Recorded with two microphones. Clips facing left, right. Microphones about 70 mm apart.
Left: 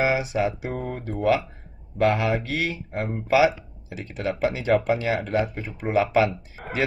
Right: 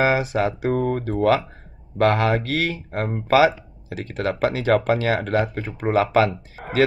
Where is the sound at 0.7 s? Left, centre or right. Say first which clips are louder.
Right 8 dB; right.